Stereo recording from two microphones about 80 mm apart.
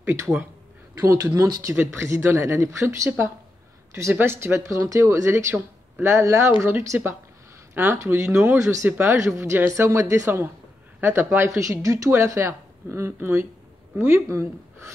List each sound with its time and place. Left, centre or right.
1.0 s speech: right
4.1 s speech: right
6.2 s a woman's voice: right